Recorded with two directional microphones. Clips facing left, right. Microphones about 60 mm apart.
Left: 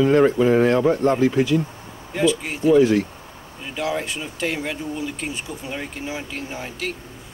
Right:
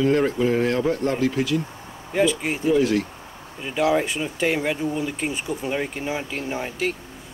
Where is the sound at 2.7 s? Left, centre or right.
Centre.